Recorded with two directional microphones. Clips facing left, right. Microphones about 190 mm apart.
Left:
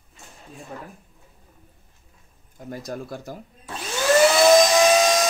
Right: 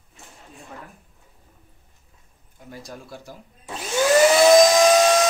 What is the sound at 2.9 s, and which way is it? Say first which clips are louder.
Speech: left 8 dB; 50° left (ahead or behind).